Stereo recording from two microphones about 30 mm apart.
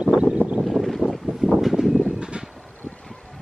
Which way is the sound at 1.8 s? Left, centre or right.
Right.